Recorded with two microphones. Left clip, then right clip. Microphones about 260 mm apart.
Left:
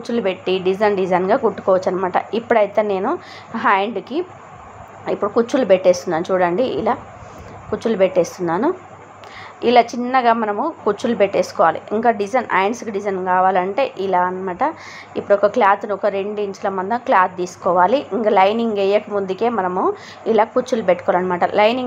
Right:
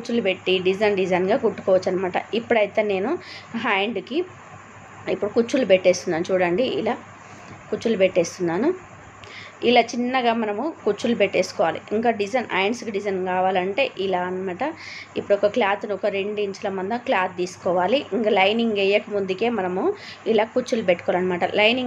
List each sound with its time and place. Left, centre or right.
0.0 s a woman's voice: centre